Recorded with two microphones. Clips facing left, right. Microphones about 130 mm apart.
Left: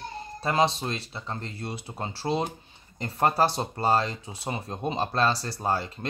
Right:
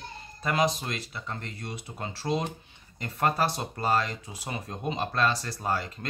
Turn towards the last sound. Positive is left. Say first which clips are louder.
# left 2 dB
turn(degrees=30)  # may be behind; listen again after turning